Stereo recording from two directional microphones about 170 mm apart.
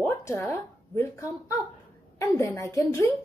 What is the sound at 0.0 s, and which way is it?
A woman's voice, 15° left (ahead or behind).